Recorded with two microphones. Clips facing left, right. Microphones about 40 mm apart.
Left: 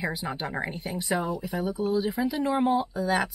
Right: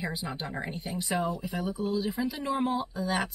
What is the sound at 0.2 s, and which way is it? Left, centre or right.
Speech, left.